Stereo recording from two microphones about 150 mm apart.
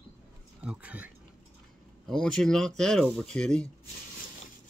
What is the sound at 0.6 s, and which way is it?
Speech, 10° right (ahead or behind).